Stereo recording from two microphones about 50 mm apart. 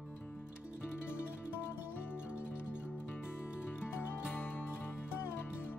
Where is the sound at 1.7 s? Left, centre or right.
Left.